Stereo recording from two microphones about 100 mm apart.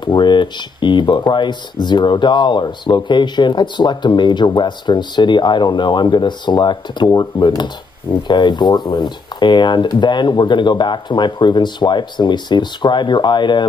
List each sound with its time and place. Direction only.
0.0 s speech: 50° left (ahead or behind)